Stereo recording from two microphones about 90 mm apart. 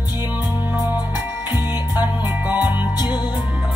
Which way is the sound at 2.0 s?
20° right (ahead or behind).